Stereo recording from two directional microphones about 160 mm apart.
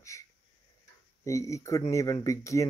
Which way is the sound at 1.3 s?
20° left (ahead or behind).